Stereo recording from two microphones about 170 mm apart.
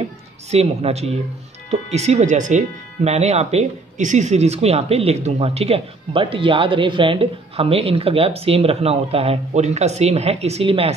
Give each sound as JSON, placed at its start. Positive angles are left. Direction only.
{"t": 0.5, "sound": "speech", "side_deg": -40}